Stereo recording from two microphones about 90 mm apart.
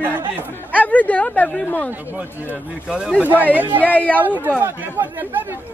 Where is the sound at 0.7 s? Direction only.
15° left (ahead or behind).